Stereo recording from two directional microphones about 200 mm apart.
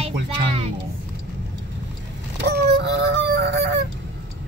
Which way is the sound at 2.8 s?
60° right (ahead or behind).